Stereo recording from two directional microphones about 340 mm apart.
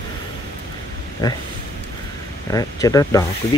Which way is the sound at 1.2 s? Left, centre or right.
Centre.